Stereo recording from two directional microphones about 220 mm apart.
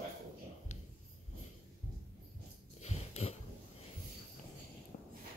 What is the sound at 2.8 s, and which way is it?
Dog, 30° left (ahead or behind).